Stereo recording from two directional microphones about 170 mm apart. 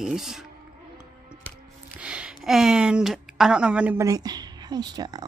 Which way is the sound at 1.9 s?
5° right (ahead or behind).